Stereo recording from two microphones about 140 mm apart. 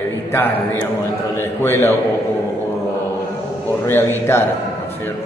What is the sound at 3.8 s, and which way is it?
Speech, 15° left (ahead or behind).